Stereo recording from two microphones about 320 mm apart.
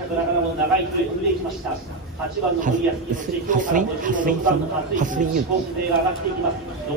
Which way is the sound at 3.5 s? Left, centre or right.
Right.